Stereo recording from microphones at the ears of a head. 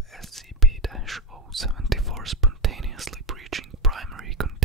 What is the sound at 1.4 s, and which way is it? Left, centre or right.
Whispering, right.